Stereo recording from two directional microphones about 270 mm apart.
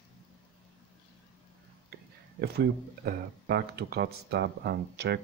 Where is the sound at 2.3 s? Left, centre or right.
Right.